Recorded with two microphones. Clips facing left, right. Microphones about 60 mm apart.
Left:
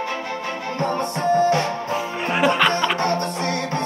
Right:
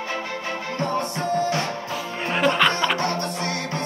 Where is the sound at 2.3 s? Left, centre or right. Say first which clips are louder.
Left 2 dB; centre.